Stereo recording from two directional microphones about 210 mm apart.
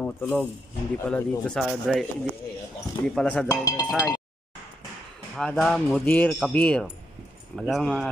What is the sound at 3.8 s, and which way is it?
Speech, centre (ahead or behind).